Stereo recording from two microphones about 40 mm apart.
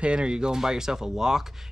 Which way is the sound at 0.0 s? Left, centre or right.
Right.